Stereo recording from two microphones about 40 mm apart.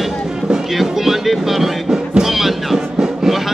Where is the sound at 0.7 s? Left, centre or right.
Centre.